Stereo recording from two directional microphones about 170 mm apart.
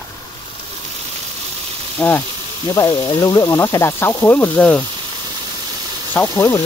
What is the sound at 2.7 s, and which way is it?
Speech, 25° left (ahead or behind).